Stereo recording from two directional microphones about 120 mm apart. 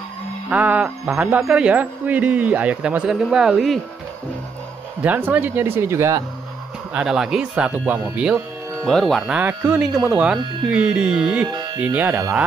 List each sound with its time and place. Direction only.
0.5 s speech: 10° right (ahead or behind)
5.0 s speech: 15° right (ahead or behind)
6.9 s speech: 5° right (ahead or behind)
8.8 s speech: 5° left (ahead or behind)
9.4 s speech: 15° right (ahead or behind)
11.4 s speech: 35° right (ahead or behind)
11.8 s speech: 15° right (ahead or behind)